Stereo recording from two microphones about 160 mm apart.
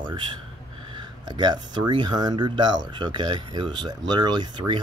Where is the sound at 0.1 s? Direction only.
30° right (ahead or behind).